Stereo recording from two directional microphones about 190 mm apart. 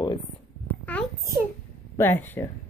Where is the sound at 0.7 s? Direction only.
10° left (ahead or behind).